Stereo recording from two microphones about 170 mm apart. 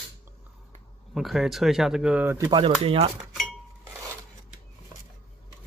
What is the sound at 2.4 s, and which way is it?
Speech, 25° right (ahead or behind).